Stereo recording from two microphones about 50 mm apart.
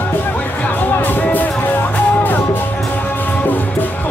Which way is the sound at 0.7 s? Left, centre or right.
Left.